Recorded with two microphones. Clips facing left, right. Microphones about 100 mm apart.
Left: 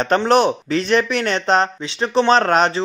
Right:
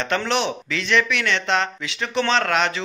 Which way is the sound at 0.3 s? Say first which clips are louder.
Left 8 dB; 40° left (ahead or behind).